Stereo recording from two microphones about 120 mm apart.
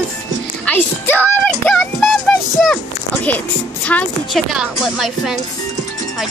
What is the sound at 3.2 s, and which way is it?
Speech, 15° left (ahead or behind).